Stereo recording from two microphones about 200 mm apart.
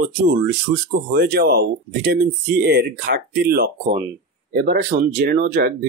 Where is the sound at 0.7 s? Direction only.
65° right (ahead or behind).